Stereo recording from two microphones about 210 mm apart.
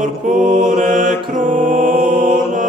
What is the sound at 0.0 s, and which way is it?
Mantra, 40° right (ahead or behind).